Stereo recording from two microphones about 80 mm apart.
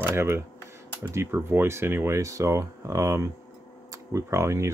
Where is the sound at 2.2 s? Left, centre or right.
Right.